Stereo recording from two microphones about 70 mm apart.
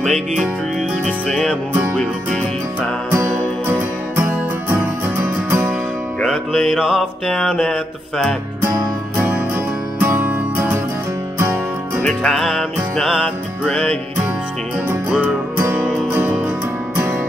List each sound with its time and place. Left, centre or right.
0.0 s music: centre
6.2 s music: centre
9.1 s music: right
12.0 s music: centre
12.4 s music: centre
13.2 s music: centre
15.5 s music: right